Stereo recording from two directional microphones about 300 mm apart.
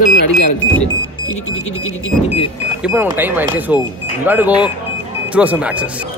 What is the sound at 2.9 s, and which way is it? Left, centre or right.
Speech, centre.